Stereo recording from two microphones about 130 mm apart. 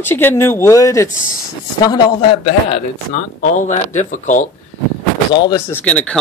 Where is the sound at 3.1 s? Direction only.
75° left (ahead or behind).